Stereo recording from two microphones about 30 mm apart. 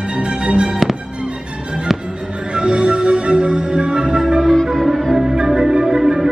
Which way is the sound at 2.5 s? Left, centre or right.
Right.